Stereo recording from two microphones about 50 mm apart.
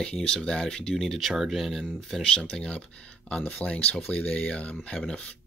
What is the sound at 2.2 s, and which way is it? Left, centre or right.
Speech, centre.